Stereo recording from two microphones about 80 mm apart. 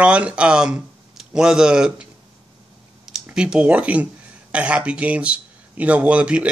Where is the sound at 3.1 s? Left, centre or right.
Centre.